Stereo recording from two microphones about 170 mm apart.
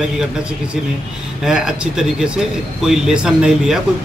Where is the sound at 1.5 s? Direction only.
5° right (ahead or behind).